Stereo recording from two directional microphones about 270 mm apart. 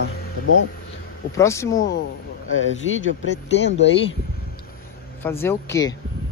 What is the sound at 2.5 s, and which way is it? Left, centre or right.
Speech, left.